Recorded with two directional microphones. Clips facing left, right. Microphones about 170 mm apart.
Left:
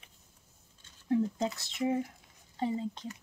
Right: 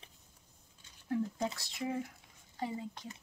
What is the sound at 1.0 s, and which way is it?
Speech, 20° left (ahead or behind).